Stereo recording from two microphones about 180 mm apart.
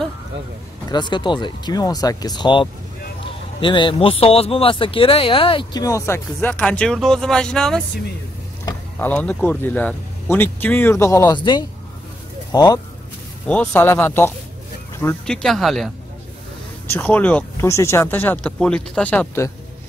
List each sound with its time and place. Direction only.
0.8 s speech: 25° left (ahead or behind); by 7.8 s 5° left (ahead or behind)
8.9 s speech: 10° left (ahead or behind)
11.3 s speech: 25° left (ahead or behind)
13.5 s speech: 10° left (ahead or behind)
16.9 s speech: 10° left (ahead or behind)